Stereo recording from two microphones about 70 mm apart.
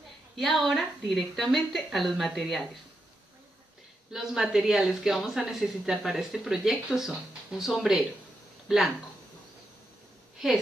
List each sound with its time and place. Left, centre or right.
0.4 s speech: centre
4.1 s speech: centre